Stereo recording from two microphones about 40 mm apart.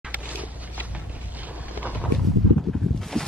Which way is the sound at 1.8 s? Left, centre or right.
Right.